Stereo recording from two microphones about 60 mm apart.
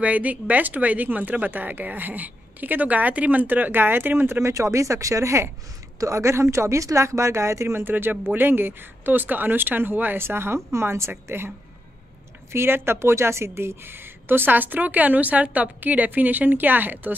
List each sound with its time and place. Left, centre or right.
0.0 s speech: right
12.5 s speech: right